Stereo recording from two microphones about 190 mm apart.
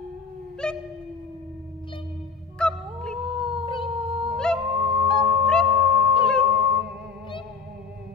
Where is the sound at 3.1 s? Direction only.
30° right (ahead or behind).